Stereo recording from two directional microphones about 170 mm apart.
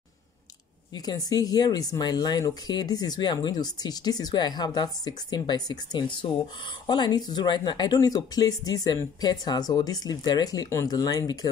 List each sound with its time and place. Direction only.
0.9 s speech: 25° left (ahead or behind)